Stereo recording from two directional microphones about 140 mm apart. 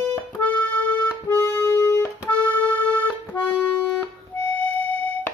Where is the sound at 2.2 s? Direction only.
10° left (ahead or behind).